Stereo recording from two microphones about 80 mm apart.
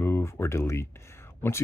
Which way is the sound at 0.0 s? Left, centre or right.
Left.